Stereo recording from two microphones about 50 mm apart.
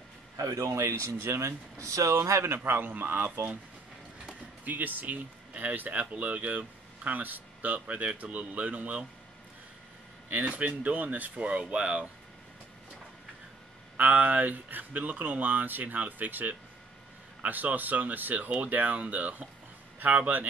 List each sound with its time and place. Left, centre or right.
0.5 s speech: right
2.5 s speech: right
4.6 s speech: right
7.8 s speech: right
10.3 s speech: right
11.3 s speech: right
13.9 s speech: right